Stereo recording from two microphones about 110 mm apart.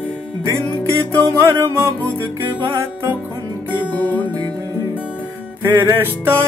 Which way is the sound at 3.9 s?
15° left (ahead or behind).